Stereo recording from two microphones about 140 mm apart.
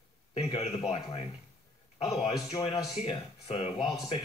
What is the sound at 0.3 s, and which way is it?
Speech, 50° left (ahead or behind).